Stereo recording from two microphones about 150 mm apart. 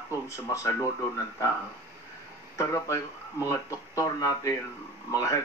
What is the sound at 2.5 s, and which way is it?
Speech, 20° left (ahead or behind).